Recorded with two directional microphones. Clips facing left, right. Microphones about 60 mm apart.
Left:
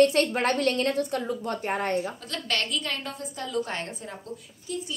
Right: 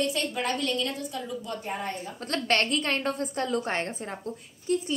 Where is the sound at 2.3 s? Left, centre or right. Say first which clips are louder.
Right 4 dB; right.